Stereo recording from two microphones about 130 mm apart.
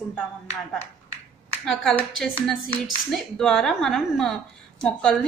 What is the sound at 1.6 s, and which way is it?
A woman's voice, centre (ahead or behind).